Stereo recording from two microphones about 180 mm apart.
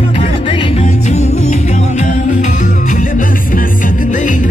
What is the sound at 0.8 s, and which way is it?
Music, 40° left (ahead or behind).